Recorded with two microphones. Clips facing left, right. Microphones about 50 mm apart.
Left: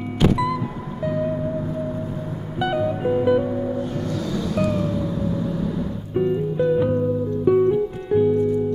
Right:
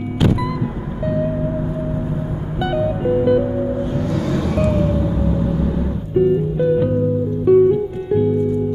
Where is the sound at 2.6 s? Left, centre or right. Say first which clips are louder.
Right 2 dB; centre.